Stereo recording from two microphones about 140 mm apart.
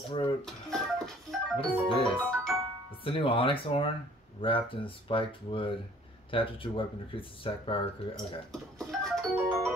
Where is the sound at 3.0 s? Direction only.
40° left (ahead or behind).